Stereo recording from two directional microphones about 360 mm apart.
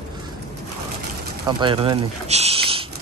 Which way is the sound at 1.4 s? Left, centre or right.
Centre.